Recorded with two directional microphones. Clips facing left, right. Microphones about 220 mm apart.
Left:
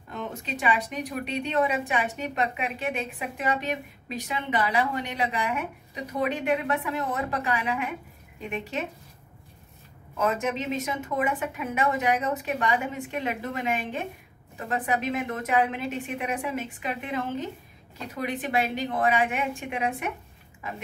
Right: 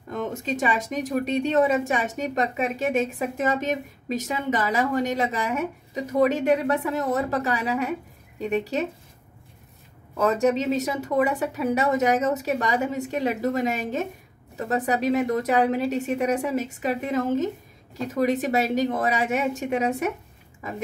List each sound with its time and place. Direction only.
0.4 s a woman's voice: 45° right (ahead or behind)
10.1 s a woman's voice: 40° right (ahead or behind)